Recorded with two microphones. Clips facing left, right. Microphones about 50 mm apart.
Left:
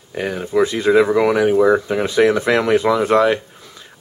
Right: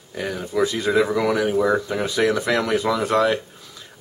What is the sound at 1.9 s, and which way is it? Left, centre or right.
A man's voice, left.